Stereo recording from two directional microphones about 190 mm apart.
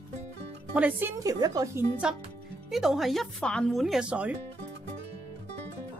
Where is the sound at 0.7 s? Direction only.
10° right (ahead or behind).